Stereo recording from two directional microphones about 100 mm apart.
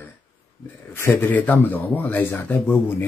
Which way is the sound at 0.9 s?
20° left (ahead or behind).